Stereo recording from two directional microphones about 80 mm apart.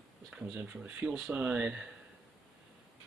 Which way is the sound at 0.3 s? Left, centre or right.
Centre.